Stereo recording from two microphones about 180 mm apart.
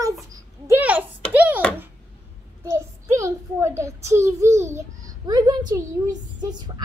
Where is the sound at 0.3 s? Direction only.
10° right (ahead or behind).